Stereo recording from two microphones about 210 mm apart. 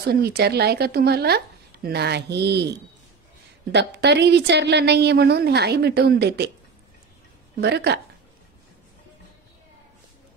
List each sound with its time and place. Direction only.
0.0 s a woman's voice: 50° right (ahead or behind)
3.7 s a woman's voice: 55° right (ahead or behind)
7.6 s a woman's voice: 50° right (ahead or behind)